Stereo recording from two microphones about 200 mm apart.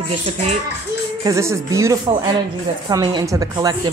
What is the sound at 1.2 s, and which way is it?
Speech, 15° right (ahead or behind).